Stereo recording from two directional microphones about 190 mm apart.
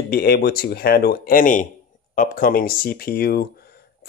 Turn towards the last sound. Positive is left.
turn(degrees=55)  # may be behind; listen again after turning